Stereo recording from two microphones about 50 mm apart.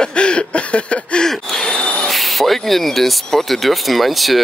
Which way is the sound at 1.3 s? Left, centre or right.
Centre.